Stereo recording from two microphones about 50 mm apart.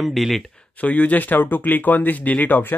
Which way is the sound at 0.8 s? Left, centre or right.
Left.